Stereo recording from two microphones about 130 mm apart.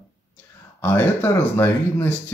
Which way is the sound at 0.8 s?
15° left (ahead or behind).